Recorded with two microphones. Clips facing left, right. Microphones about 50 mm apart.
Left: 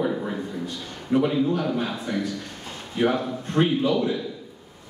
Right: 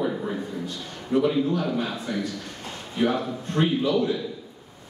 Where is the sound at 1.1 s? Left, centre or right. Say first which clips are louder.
Even; left.